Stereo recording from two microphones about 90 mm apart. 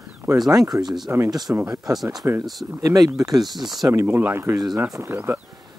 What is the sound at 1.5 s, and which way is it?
Speech, 20° right (ahead or behind).